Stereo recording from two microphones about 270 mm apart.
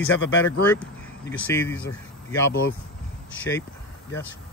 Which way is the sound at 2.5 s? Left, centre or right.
Left.